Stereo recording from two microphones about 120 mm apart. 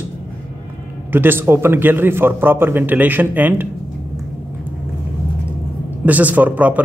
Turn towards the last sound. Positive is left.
turn(degrees=-15)  # may be behind; listen again after turning